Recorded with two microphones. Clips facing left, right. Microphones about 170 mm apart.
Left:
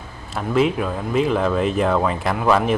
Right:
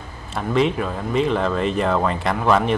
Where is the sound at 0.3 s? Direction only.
5° left (ahead or behind).